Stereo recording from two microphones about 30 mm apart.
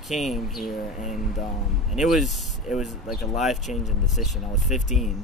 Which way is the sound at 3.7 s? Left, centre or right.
Right.